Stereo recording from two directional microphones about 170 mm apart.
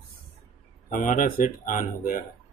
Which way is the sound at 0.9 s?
50° left (ahead or behind).